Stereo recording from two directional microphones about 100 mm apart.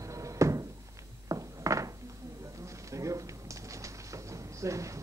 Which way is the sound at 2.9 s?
30° right (ahead or behind).